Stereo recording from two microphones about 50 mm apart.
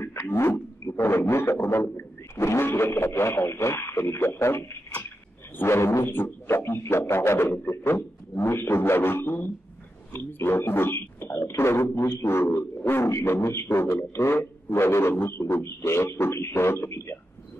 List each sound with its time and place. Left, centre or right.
0.0 s a sound: left
0.3 s speech: left
0.9 s vehicle: left
2.6 s speech: left
6.0 s speech: left
13.1 s speech: left